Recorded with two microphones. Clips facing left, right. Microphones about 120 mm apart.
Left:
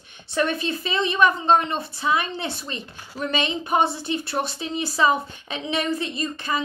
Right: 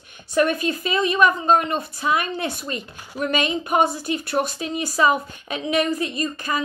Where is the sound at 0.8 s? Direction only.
30° left (ahead or behind).